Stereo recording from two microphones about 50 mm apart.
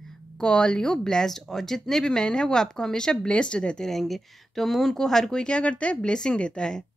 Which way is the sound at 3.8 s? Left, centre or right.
Centre.